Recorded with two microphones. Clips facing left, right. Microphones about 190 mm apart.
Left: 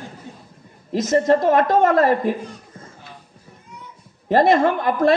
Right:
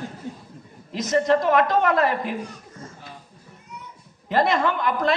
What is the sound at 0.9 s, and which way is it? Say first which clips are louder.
A woman's voice: left 3 dB; 45° left (ahead or behind).